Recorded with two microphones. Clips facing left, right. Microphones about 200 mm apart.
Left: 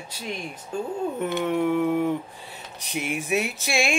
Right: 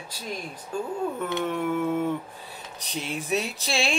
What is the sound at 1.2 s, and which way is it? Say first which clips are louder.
Speech: left 6 dB; 10° left (ahead or behind).